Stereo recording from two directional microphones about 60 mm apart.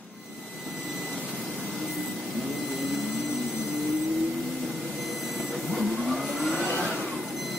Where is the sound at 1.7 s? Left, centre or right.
Centre.